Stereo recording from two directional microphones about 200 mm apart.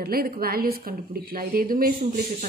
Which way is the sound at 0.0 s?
45° right (ahead or behind).